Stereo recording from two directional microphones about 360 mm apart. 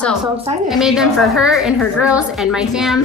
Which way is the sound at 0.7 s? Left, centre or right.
Centre.